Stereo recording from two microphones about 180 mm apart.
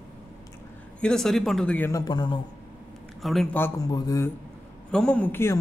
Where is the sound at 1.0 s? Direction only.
5° left (ahead or behind); by 2.4 s 25° left (ahead or behind).